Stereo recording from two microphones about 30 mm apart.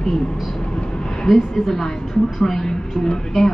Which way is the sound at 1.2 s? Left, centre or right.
Centre.